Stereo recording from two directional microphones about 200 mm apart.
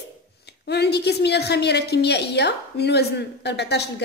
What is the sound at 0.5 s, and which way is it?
A woman's voice, 55° left (ahead or behind).